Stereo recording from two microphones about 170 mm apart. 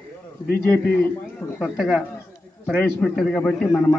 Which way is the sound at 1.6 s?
Centre (ahead or behind).